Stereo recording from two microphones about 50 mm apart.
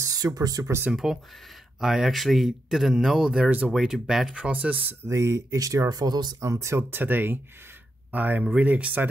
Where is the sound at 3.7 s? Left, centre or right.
Centre.